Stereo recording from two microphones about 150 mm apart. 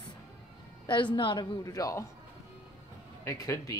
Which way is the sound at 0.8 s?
30° left (ahead or behind).